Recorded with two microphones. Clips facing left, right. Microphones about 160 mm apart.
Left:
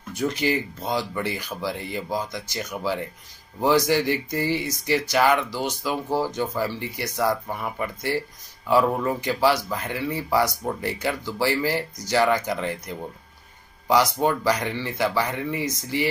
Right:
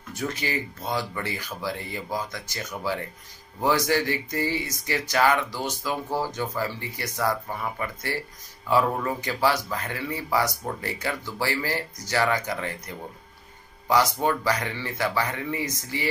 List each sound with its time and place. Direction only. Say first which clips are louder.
0.1 s speech: left 6 dB; 10° left (ahead or behind)
13.8 s speech: left 2 dB; 15° left (ahead or behind)